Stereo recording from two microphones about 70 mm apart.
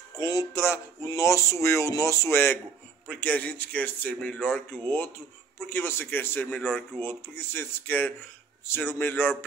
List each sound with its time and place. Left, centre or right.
0.2 s speech: left
0.6 s speech: left
3.1 s speech: centre